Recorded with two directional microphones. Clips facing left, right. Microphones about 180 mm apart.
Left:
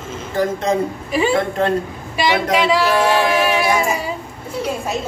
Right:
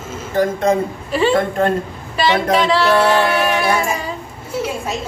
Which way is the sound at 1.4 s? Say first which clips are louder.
Right 2 dB; 45° right (ahead or behind).